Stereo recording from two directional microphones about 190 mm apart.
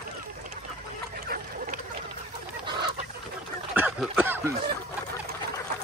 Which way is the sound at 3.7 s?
5° right (ahead or behind).